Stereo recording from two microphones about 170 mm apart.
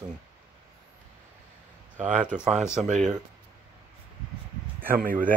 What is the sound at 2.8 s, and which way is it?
Speech, 45° right (ahead or behind).